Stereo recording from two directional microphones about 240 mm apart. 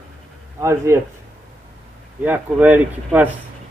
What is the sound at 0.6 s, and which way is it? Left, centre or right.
Speech, centre.